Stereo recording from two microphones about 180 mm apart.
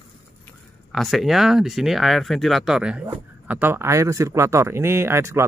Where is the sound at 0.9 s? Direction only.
Centre (ahead or behind).